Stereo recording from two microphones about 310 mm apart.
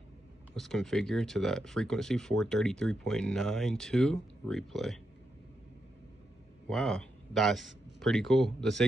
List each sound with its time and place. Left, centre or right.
0.6 s speech: centre
6.7 s a man's voice: centre